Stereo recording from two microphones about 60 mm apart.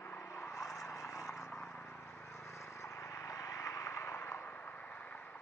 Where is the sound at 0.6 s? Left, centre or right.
Left.